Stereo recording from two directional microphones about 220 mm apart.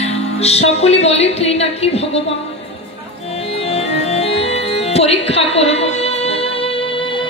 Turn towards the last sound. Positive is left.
turn(degrees=25)  # may be behind; listen again after turning